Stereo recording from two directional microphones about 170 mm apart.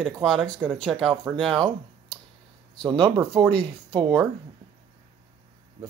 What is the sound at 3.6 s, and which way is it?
Speech, 30° right (ahead or behind).